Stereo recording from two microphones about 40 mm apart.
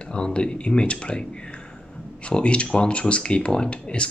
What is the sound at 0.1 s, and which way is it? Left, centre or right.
Speech, left.